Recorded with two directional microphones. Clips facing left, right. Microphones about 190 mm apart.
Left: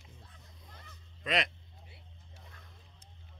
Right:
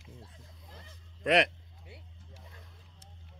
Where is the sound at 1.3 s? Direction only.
65° right (ahead or behind).